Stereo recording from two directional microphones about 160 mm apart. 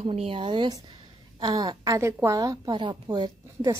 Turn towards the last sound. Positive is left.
turn(degrees=-20)  # may be behind; listen again after turning